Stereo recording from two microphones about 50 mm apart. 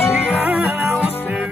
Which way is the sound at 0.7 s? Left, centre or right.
Right.